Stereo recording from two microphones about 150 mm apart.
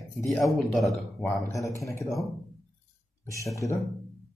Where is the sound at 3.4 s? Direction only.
20° left (ahead or behind).